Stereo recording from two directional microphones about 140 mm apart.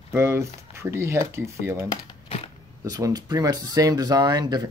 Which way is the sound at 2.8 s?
25° right (ahead or behind).